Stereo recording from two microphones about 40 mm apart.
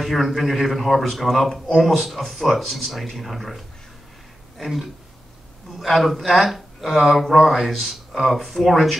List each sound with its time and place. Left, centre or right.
0.0 s speech: centre